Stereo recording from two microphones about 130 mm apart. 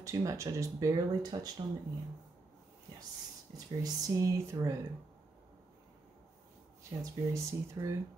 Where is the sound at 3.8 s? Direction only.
25° right (ahead or behind).